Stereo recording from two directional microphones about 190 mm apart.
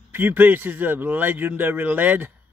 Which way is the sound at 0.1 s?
10° right (ahead or behind).